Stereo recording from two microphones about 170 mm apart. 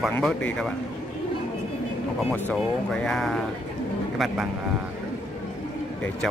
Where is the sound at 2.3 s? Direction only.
5° left (ahead or behind).